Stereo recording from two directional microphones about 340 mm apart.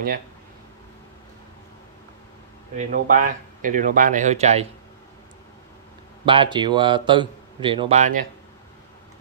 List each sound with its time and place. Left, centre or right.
2.9 s speech: right
6.2 s speech: centre